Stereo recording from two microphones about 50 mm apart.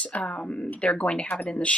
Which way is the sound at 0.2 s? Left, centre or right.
Left.